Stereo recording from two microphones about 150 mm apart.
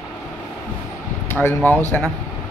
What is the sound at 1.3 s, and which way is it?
Speech, 15° left (ahead or behind).